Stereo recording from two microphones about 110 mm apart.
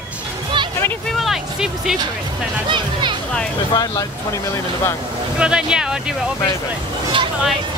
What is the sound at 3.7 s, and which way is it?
Speech, 40° left (ahead or behind).